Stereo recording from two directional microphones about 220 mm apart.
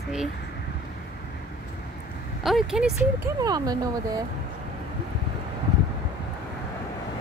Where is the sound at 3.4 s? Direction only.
15° right (ahead or behind).